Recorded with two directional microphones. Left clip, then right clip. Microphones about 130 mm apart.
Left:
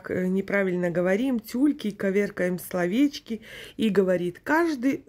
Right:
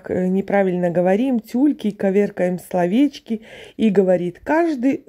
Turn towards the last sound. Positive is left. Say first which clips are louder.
# right 5 dB
turn(degrees=-25)  # may be behind; listen again after turning